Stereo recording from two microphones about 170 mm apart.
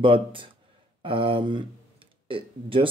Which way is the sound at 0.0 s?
30° right (ahead or behind).